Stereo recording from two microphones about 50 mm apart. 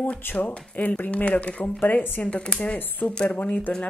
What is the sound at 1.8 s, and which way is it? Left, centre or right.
Speech, left.